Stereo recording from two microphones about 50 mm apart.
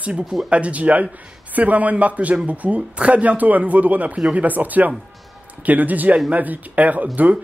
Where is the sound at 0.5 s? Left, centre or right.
Right.